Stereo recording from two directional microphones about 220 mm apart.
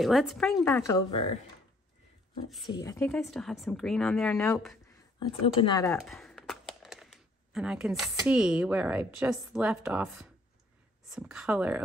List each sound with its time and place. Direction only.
0.0 s speech: centre (ahead or behind)
1.1 s speech: 25° left (ahead or behind)
2.7 s speech: 15° left (ahead or behind)
3.1 s speech: 5° left (ahead or behind)
5.2 s speech: 20° left (ahead or behind)
5.9 s speech: centre (ahead or behind)